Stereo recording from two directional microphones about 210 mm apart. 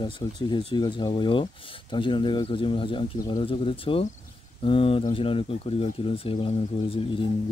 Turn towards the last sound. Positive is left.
turn(degrees=25)  # may be behind; listen again after turning